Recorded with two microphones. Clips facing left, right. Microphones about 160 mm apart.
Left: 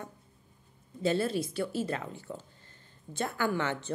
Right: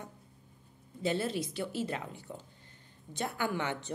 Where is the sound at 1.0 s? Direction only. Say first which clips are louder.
Left 3 dB; 15° right (ahead or behind).